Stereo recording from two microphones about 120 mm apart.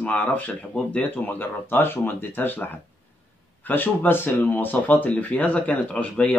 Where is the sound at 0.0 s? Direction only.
10° left (ahead or behind).